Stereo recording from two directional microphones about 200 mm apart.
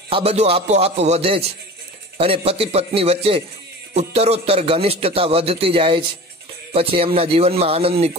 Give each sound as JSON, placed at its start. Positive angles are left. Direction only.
{"t": 0.1, "sound": "a man's voice", "side_deg": -30}